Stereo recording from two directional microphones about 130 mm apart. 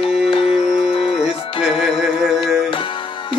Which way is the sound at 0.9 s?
50° left (ahead or behind).